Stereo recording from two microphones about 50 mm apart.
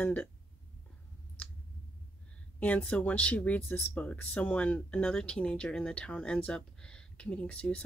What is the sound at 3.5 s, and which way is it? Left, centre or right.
Speech, left.